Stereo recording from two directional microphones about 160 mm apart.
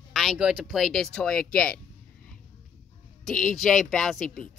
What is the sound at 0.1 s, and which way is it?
Speech, centre (ahead or behind).